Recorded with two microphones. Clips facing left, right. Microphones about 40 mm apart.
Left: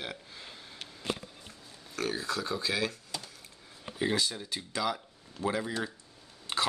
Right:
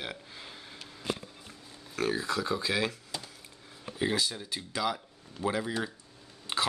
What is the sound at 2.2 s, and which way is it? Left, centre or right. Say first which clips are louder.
Speech: right 2 dB; right.